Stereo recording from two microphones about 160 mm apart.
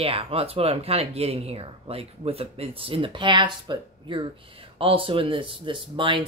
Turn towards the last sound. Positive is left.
turn(degrees=-30)  # may be behind; listen again after turning